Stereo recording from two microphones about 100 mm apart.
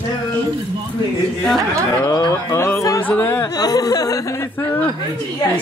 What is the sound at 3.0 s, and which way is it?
Speech, 20° left (ahead or behind).